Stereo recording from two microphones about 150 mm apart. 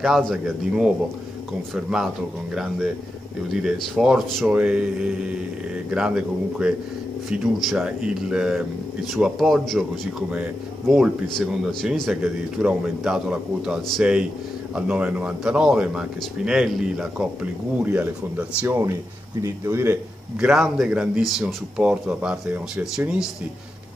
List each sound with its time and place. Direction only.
0.0 s speech: centre (ahead or behind)
18.6 s a man's voice: 15° right (ahead or behind)
20.4 s speech: centre (ahead or behind)